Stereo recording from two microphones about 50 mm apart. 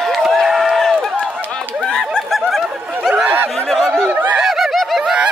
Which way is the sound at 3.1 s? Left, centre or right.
Right.